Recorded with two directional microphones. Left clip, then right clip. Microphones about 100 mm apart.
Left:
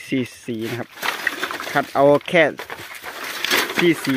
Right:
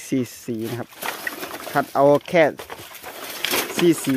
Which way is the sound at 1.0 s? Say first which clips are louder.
Left 7 dB; 60° left (ahead or behind).